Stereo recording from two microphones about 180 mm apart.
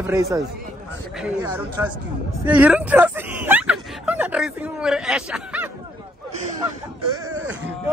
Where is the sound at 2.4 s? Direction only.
10° right (ahead or behind).